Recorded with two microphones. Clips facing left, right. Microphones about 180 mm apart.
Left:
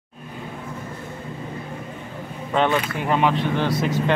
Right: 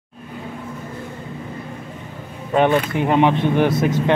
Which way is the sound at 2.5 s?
15° right (ahead or behind).